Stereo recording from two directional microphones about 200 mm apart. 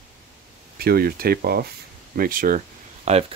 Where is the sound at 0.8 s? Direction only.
50° right (ahead or behind).